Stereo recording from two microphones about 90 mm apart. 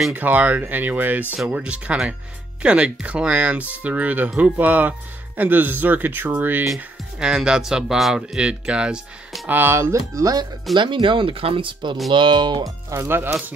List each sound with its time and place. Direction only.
0.1 s speech: 20° right (ahead or behind)
6.7 s speech: 10° right (ahead or behind)
9.5 s speech: 25° right (ahead or behind); by 10.4 s 40° right (ahead or behind)
10.7 s speech: 60° right (ahead or behind)
12.9 s speech: 25° right (ahead or behind)